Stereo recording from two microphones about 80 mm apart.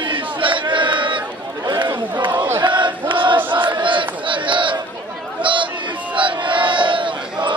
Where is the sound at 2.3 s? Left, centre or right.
Right.